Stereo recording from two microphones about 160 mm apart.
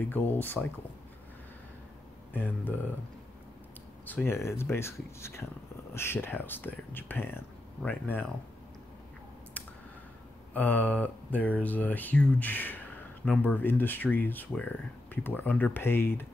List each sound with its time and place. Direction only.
0.0 s speech: 10° left (ahead or behind)
2.3 s speech: 10° left (ahead or behind)
4.0 s speech: 10° left (ahead or behind)
9.6 s clicking: 10° left (ahead or behind)
10.5 s speech: 10° left (ahead or behind)